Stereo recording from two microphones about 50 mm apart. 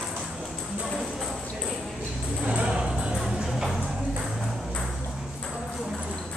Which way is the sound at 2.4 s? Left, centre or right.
Right.